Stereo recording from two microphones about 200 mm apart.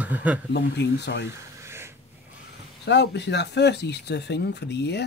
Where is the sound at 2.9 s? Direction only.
60° left (ahead or behind).